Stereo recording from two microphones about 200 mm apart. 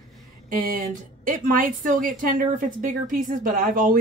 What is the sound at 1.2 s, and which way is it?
A woman's voice, 40° right (ahead or behind).